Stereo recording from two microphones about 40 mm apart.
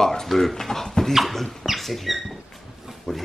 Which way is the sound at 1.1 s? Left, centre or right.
Centre.